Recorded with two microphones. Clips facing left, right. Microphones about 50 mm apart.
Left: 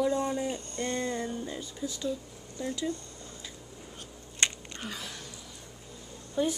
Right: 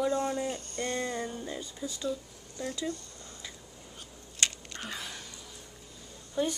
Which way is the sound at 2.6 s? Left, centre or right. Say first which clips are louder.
Left 2 dB; centre.